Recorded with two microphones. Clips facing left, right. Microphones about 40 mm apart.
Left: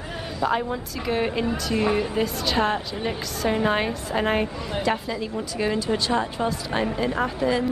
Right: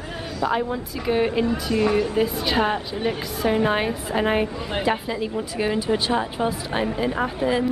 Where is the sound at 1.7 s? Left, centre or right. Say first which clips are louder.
Right 2 dB; centre.